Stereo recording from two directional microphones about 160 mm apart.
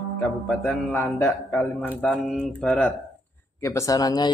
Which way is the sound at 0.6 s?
10° left (ahead or behind).